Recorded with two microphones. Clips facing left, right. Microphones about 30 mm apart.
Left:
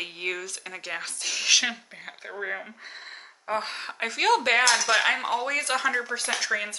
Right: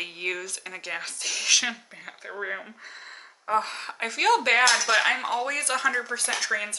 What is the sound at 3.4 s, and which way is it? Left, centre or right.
Speech, centre.